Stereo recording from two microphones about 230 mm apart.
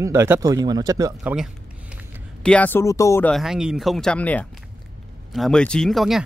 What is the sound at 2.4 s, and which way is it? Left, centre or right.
Speech, centre.